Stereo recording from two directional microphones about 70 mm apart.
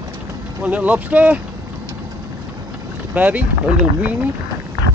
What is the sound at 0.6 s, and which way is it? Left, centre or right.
Speech, right.